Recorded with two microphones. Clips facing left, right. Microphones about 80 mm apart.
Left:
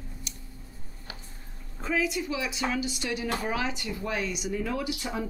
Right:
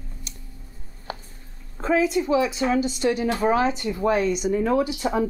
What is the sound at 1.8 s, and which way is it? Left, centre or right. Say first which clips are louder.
A woman's voice: right 8 dB; right.